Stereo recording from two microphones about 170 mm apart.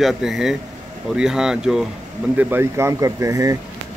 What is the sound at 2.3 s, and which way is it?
Speech, 15° right (ahead or behind).